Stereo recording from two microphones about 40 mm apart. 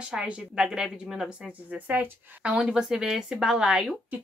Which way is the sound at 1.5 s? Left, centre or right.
Right.